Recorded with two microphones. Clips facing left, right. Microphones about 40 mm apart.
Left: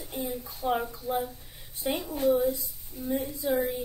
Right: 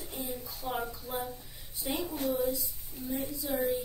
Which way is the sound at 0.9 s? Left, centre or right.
Left.